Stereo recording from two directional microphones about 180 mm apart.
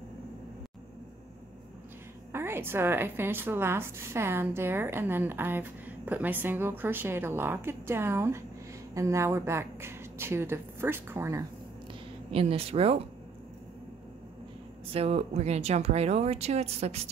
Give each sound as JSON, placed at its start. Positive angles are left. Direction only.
{"t": 2.3, "sound": "a woman's voice", "side_deg": -15}
{"t": 12.3, "sound": "speech", "side_deg": -30}
{"t": 14.9, "sound": "speech", "side_deg": -35}